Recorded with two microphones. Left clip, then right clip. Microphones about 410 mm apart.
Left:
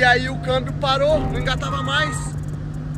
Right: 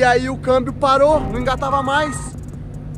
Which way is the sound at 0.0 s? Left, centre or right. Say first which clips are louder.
Right 2 dB; centre.